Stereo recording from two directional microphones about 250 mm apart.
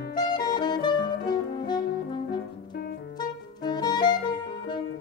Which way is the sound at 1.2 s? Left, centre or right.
Centre.